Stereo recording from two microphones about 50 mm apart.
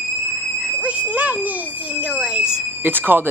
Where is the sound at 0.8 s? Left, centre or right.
Right.